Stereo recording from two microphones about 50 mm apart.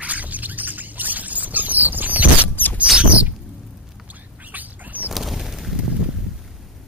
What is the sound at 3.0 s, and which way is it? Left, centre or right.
Rodents, right.